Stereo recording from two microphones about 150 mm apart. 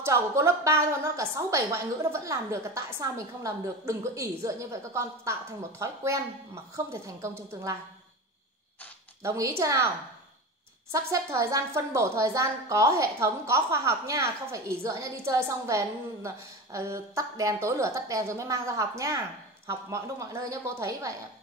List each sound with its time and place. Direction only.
0.0 s a woman's voice: 20° right (ahead or behind)
9.2 s a woman's voice: 20° right (ahead or behind)
10.9 s a woman's voice: 20° right (ahead or behind)